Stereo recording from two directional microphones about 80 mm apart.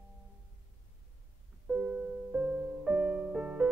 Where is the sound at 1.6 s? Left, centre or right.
Centre.